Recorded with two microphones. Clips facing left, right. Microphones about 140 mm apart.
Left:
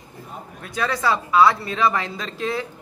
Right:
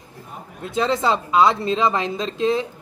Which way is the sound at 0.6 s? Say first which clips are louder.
Right 3 dB; 25° right (ahead or behind).